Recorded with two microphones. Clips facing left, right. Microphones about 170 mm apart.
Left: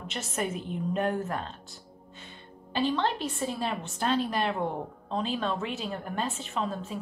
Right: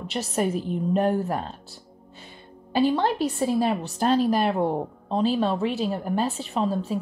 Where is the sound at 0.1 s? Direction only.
35° right (ahead or behind).